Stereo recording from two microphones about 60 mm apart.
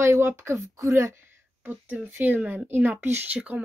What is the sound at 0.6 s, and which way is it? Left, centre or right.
Speech, right.